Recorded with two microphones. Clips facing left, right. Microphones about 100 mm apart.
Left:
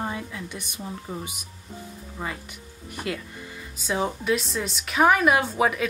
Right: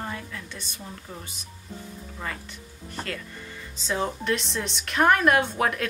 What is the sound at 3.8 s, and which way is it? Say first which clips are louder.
A woman's voice: left 1 dB; 10° left (ahead or behind).